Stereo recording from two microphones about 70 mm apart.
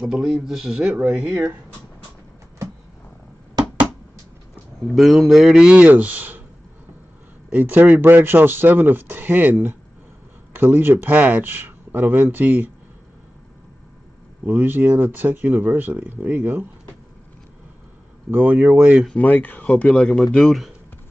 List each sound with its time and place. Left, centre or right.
0.0 s speech: centre
1.3 s speech: right
4.9 s speech: centre
5.6 s speech: centre
7.5 s speech: right
14.4 s speech: right
18.3 s speech: right
19.1 s speech: left
20.4 s speech: centre